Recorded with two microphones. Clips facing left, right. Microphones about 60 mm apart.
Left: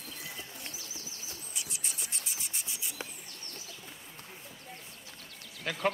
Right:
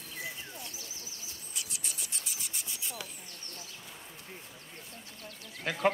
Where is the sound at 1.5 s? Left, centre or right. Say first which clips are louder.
Right 1 dB; left.